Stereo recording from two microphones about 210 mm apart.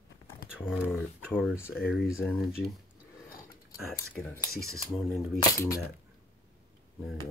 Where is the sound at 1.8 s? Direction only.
45° left (ahead or behind).